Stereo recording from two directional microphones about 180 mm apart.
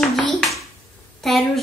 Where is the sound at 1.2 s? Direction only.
Centre (ahead or behind).